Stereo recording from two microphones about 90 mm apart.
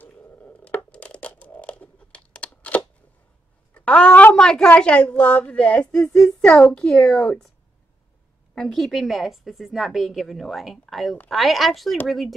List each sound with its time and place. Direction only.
0.0 s crushing: 20° left (ahead or behind)
3.7 s a woman's voice: 15° left (ahead or behind)
8.5 s a woman's voice: 5° left (ahead or behind)